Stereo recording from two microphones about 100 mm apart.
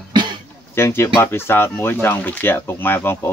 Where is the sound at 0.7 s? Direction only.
25° left (ahead or behind).